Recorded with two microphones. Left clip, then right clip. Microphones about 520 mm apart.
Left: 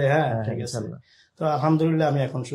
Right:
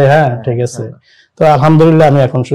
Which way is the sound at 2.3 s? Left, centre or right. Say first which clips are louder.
Right 16 dB; right.